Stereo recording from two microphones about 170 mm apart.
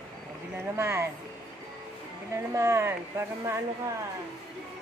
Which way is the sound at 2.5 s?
15° right (ahead or behind).